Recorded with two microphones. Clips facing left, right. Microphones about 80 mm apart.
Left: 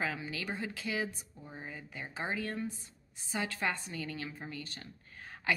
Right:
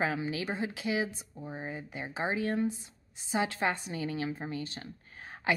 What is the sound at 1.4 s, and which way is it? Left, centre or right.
Speech, right.